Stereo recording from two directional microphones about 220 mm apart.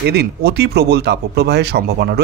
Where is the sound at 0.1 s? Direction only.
45° right (ahead or behind).